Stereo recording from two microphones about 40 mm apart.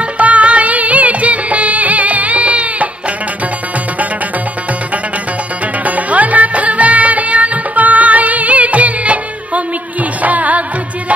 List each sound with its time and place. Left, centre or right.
0.0 s music: right
5.9 s music: right